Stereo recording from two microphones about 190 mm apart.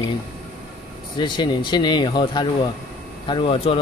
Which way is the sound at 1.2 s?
25° left (ahead or behind).